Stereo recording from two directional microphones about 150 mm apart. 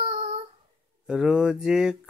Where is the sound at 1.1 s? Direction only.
5° right (ahead or behind).